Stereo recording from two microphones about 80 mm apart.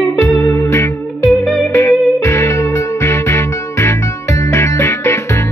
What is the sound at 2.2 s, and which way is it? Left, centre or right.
Music, left.